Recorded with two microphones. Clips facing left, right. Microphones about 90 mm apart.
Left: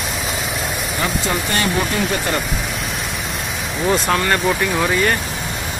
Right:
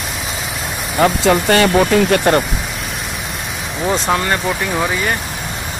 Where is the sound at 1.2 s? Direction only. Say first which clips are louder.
Right 8 dB; 90° right; by 2.4 s 60° right (ahead or behind).